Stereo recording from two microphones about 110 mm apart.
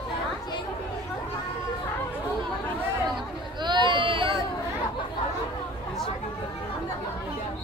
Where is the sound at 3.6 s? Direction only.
45° right (ahead or behind).